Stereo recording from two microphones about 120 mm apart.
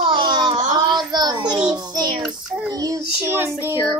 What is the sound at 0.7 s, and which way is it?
Child singing, 35° right (ahead or behind).